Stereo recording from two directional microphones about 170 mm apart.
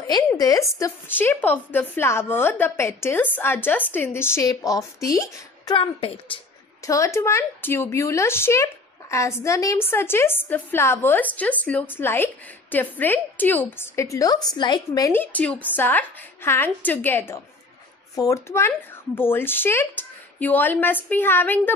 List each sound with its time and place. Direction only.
0.0 s a woman's voice: 20° left (ahead or behind)
5.8 s a woman's voice: 35° left (ahead or behind)
6.9 s a woman's voice: 15° left (ahead or behind)